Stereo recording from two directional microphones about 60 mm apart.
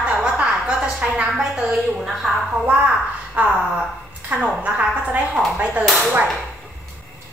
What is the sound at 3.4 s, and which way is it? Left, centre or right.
A woman's voice, right.